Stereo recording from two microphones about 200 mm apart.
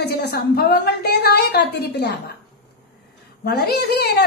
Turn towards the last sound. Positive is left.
turn(degrees=55)  # may be behind; listen again after turning